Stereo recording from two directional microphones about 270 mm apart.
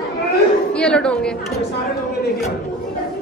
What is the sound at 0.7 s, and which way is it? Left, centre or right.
Speech, centre.